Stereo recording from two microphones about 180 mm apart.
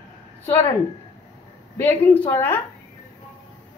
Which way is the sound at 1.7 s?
10° left (ahead or behind).